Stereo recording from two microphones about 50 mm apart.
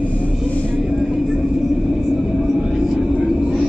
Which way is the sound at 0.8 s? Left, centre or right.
Centre.